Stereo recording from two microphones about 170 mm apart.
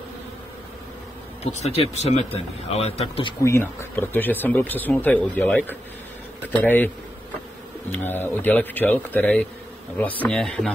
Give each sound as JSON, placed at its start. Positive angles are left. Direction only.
{"t": 1.4, "sound": "speech", "side_deg": 40}
{"t": 3.4, "sound": "speech", "side_deg": 15}
{"t": 7.9, "sound": "speech", "side_deg": 10}